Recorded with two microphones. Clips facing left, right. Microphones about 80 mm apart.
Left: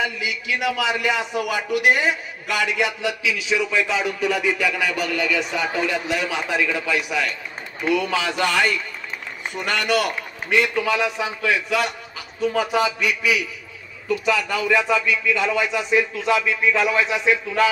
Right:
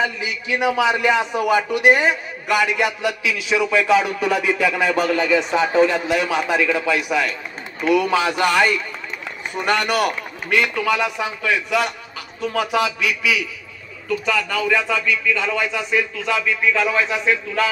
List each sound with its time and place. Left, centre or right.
0.2 s a man's voice: right
11.0 s a man's voice: centre
14.0 s speech: centre